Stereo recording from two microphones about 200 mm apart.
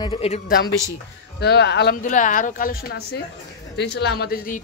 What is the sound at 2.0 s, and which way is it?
Speech, 40° left (ahead or behind).